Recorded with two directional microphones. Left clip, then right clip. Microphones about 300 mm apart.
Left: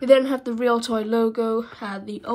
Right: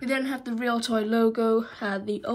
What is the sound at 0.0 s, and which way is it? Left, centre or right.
Speech, centre.